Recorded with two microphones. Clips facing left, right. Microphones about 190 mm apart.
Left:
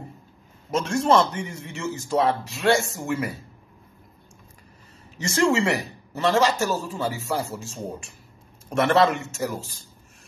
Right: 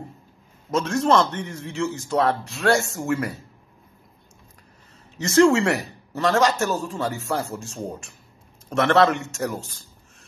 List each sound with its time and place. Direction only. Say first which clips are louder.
0.8 s a man's voice: even; centre (ahead or behind)
5.2 s a man's voice: right 5 dB; centre (ahead or behind)